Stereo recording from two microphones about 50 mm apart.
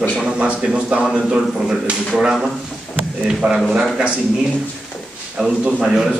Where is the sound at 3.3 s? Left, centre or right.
Centre.